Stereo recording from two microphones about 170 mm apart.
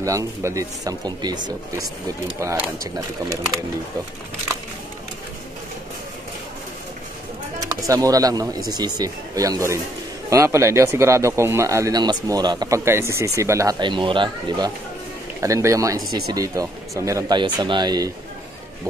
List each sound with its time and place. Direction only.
0.0 s speech: 20° right (ahead or behind)
2.4 s speech: 20° right (ahead or behind)
7.7 s speech: 20° right (ahead or behind)
15.4 s speech: 20° right (ahead or behind)